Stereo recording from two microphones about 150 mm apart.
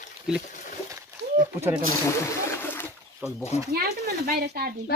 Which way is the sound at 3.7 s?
90° right.